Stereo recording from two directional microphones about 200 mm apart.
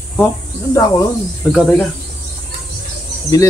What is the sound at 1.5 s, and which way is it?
Speech, 5° left (ahead or behind).